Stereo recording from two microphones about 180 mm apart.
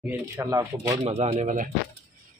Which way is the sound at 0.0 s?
15° right (ahead or behind).